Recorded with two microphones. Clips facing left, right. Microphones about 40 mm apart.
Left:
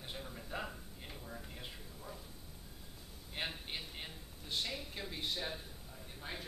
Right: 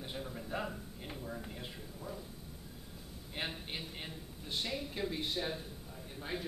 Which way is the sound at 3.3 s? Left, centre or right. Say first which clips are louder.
Right 1 dB; centre.